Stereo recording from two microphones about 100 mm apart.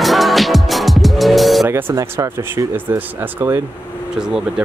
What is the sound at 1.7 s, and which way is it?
Music, 25° right (ahead or behind).